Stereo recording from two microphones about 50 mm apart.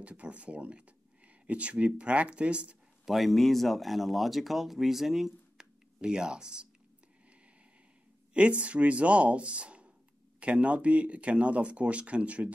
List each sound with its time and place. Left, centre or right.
0.0 s speech: right
3.1 s speech: centre
8.3 s speech: right